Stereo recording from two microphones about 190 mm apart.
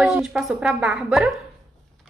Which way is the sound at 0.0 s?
5° right (ahead or behind).